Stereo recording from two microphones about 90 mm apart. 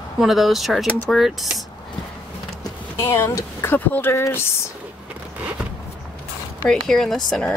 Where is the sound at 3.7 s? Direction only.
20° left (ahead or behind).